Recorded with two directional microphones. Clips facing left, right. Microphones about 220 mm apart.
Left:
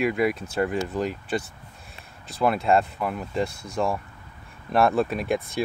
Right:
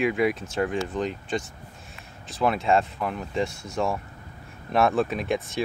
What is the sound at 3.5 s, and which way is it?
Speech, 55° left (ahead or behind).